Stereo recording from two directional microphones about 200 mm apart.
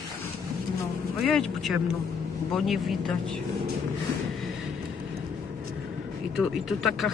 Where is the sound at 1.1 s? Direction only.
Centre (ahead or behind).